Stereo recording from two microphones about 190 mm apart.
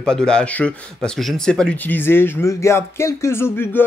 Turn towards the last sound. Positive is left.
turn(degrees=10)  # may be behind; listen again after turning